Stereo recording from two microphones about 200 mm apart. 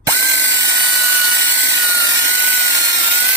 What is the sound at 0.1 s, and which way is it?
Ratchet, 15° left (ahead or behind).